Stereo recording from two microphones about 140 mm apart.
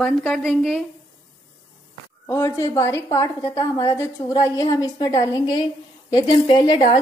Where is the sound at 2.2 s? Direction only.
20° left (ahead or behind); by 7.0 s 40° left (ahead or behind).